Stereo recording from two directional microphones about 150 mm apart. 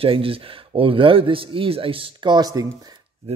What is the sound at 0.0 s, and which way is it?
Speech, 40° right (ahead or behind).